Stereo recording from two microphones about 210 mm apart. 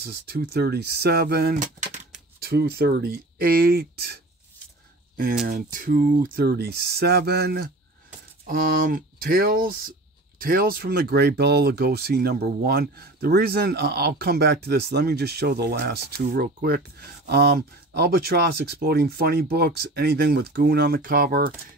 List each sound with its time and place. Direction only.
0.0 s speech: 50° right (ahead or behind)
5.5 s speech: 40° right (ahead or behind)
17.9 s speech: 50° right (ahead or behind)